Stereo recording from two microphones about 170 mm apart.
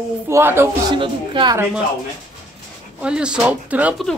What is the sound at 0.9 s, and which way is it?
Speech, 30° right (ahead or behind).